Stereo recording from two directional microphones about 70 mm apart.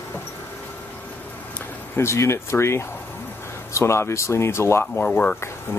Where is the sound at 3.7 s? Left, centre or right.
Left.